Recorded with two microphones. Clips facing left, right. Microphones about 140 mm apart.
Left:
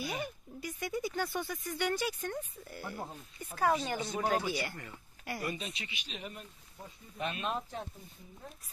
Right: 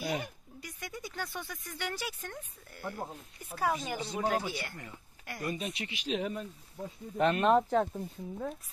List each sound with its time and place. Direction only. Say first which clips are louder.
0.0 s speech: right 3 dB; 70° right (ahead or behind)
0.6 s speech: left 7 dB; centre (ahead or behind)
5.7 s speech: right 10 dB; 65° right (ahead or behind)